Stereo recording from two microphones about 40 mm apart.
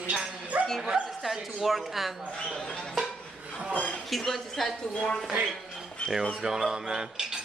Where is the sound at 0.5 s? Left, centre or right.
Right.